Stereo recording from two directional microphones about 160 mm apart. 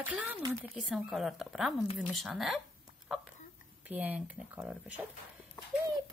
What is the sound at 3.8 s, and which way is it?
Speech, 10° right (ahead or behind).